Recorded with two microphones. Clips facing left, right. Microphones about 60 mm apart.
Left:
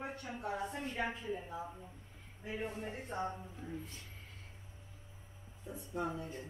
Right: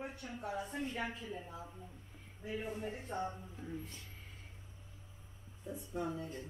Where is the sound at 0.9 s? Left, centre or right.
Centre.